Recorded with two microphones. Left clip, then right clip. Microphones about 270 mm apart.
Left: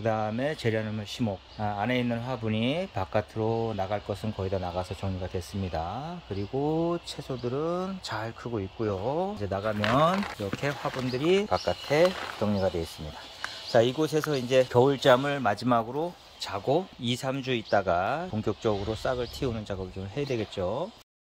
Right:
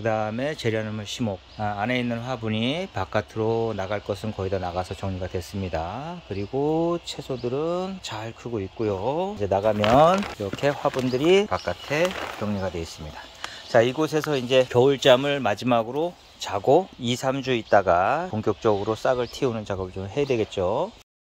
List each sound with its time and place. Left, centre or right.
0.0 s speech: centre
9.5 s speech: right
10.6 s speech: centre
13.7 s speech: centre